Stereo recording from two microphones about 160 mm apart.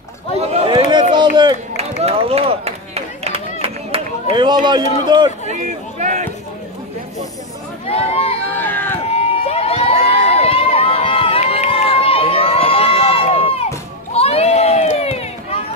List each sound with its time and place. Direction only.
0.4 s a sound: 40° right (ahead or behind)
1.3 s speech: 30° right (ahead or behind)
1.8 s a sound: 40° right (ahead or behind)
5.5 s speech: 45° right (ahead or behind)
7.8 s speech: 40° left (ahead or behind)
8.5 s speech: 10° left (ahead or behind)
9.1 s crowd: 40° left (ahead or behind)